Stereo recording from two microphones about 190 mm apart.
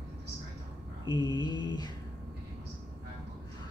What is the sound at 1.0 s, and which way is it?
Mantra, 25° left (ahead or behind).